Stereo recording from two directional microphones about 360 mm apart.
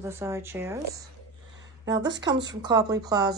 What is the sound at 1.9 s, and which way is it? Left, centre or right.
Speech, right.